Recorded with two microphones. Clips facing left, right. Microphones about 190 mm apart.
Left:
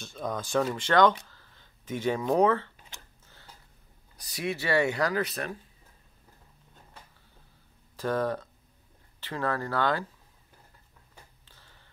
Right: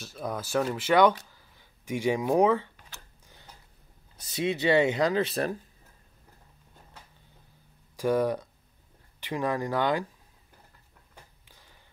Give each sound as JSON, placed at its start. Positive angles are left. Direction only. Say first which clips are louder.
{"t": 0.0, "sound": "speech", "louder": "even", "side_deg": -5}
{"t": 4.2, "sound": "speech", "louder": "right 5 dB", "side_deg": -25}
{"t": 7.9, "sound": "speech", "louder": "right 3 dB", "side_deg": -10}
{"t": 11.4, "sound": "a sound", "louder": "right 1 dB", "side_deg": -15}